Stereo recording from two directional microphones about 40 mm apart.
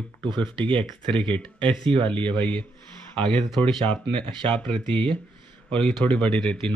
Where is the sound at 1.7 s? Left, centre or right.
Left.